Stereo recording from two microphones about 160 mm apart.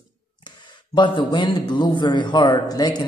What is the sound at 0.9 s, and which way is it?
A man's voice, 30° left (ahead or behind).